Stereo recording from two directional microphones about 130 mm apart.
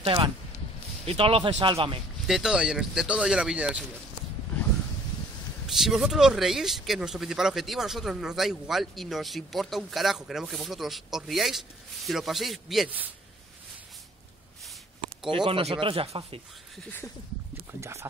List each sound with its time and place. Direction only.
0.0 s speech: 40° right (ahead or behind)
2.2 s speech: 5° right (ahead or behind)
5.7 s speech: centre (ahead or behind)
15.2 s speech: 40° right (ahead or behind)
17.7 s speech: 20° right (ahead or behind)